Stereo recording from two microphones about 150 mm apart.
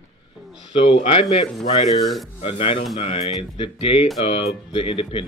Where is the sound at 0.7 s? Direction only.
40° left (ahead or behind).